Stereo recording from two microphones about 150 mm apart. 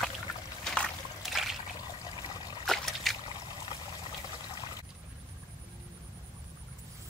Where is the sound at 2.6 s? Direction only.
Centre (ahead or behind).